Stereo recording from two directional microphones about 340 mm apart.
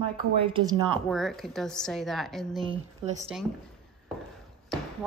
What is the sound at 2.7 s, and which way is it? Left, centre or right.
Speech, centre.